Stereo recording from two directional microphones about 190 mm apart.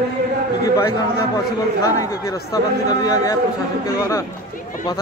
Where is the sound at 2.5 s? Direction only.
20° left (ahead or behind).